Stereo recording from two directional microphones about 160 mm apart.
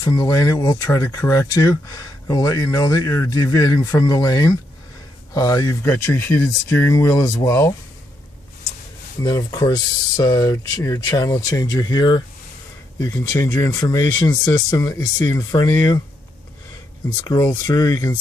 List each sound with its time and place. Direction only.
0.0 s speech: 20° left (ahead or behind)
9.2 s speech: 25° left (ahead or behind)
17.3 s speech: 25° left (ahead or behind)